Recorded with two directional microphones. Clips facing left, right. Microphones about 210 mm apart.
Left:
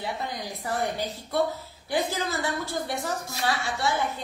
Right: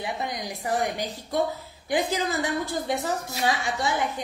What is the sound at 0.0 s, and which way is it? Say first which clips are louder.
A woman's voice: right 2 dB; 15° right (ahead or behind).